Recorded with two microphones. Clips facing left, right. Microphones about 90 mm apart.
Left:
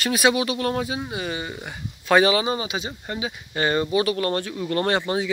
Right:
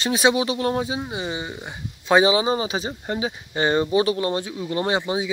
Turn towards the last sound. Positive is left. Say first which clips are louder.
# even
turn(degrees=-15)  # may be behind; listen again after turning